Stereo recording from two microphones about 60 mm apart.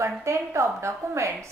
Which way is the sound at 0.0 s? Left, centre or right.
Right.